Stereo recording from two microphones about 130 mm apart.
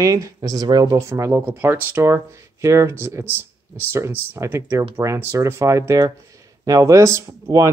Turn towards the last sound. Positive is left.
turn(degrees=-25)  # may be behind; listen again after turning